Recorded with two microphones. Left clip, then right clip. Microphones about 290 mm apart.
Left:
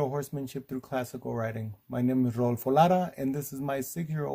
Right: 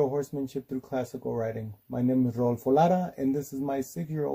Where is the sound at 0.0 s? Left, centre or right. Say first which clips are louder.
Right 4 dB; left.